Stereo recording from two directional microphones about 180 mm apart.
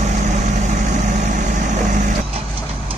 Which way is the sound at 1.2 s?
45° right (ahead or behind).